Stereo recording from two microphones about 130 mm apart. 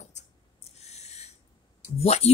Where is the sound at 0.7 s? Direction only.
55° left (ahead or behind).